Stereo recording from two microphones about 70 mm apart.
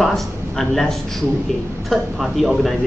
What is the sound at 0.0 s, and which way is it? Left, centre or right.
A man's voice, centre.